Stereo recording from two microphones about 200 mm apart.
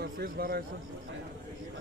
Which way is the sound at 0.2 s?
45° right (ahead or behind).